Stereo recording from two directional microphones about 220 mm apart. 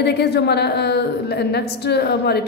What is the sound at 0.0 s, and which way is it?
A woman's voice, 50° left (ahead or behind).